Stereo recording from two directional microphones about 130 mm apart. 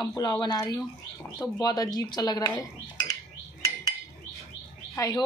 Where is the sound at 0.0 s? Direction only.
30° left (ahead or behind).